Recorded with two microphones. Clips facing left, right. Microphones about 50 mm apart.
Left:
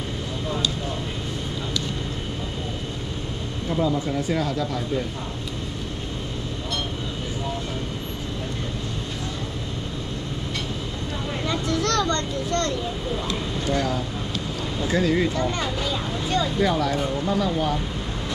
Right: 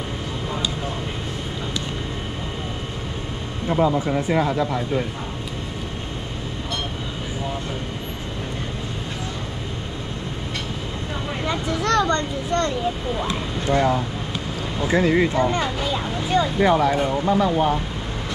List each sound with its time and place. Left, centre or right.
3.6 s speech: right
11.4 s a sound: centre
13.2 s speech: right